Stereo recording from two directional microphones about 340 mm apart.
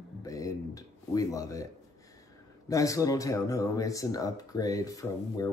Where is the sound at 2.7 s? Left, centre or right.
Centre.